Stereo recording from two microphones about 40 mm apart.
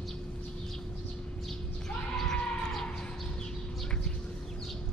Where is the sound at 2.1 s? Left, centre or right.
Centre.